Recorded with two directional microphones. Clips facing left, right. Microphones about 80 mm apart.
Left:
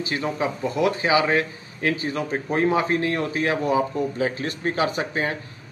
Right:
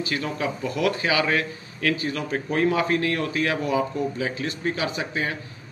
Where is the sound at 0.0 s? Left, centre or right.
Left.